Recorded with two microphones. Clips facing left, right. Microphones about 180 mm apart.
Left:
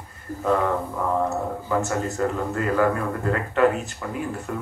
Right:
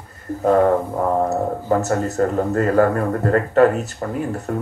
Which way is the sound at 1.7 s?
40° right (ahead or behind).